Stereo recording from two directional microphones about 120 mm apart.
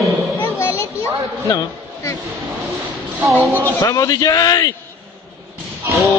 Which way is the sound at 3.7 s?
30° left (ahead or behind).